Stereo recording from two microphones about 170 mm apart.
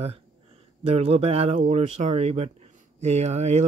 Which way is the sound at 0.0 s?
35° right (ahead or behind).